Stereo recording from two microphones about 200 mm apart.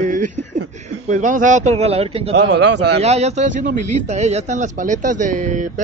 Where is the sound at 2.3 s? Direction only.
60° right (ahead or behind).